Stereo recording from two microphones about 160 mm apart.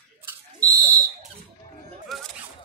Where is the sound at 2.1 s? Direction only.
Centre (ahead or behind).